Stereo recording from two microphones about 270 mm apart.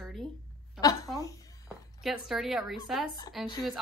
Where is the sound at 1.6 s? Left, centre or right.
Centre.